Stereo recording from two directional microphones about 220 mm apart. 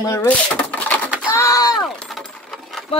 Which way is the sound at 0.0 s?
15° left (ahead or behind).